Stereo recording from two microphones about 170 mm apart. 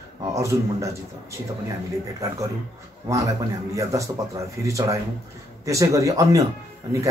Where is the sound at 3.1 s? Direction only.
20° right (ahead or behind).